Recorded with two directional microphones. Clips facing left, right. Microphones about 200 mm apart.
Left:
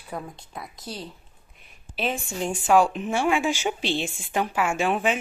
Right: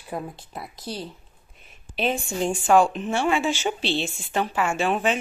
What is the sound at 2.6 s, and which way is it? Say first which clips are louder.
A woman's voice: even; 5° left (ahead or behind).